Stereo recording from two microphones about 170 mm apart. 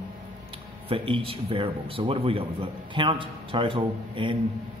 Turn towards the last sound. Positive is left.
turn(degrees=-30)  # may be behind; listen again after turning